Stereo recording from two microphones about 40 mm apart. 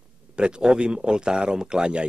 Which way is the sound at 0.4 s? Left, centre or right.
Right.